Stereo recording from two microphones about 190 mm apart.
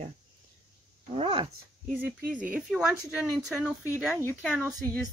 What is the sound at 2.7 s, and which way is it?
Speech, centre (ahead or behind).